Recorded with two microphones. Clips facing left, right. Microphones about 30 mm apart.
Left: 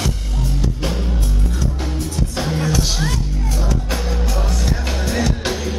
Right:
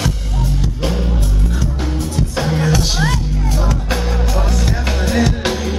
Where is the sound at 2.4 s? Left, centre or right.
Centre.